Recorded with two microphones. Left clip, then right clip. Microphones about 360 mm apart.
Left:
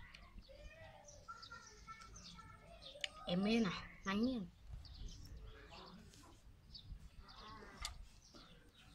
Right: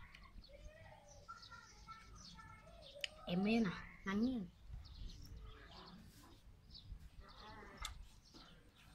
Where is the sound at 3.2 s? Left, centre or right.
Centre.